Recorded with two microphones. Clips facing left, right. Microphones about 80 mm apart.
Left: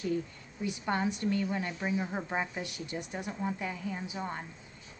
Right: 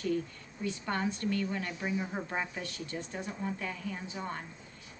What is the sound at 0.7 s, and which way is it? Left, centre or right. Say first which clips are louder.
A woman's voice: left 2 dB; centre.